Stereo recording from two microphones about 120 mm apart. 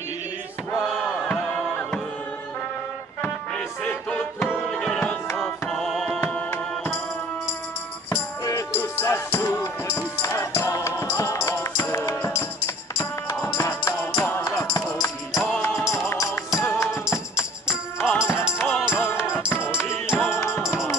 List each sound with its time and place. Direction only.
1.2 s music: 10° left (ahead or behind)
3.2 s music: 10° left (ahead or behind)
6.5 s music: 20° left (ahead or behind)
9.0 s music: 20° left (ahead or behind)